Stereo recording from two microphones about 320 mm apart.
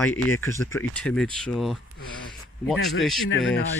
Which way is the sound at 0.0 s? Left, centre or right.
Centre.